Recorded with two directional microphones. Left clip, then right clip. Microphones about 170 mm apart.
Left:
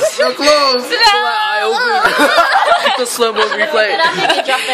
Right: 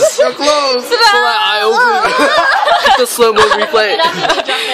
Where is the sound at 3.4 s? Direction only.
35° right (ahead or behind).